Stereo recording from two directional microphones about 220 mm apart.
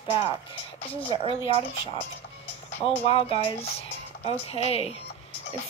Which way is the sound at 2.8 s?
25° left (ahead or behind).